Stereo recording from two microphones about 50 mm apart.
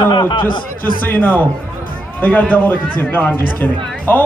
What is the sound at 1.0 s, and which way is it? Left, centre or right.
A man's voice, left.